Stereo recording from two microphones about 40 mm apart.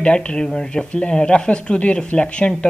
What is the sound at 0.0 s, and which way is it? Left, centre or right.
Speech, left.